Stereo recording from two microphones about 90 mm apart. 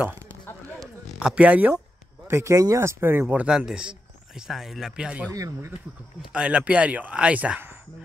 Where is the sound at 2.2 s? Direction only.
30° right (ahead or behind); by 5.3 s 15° right (ahead or behind).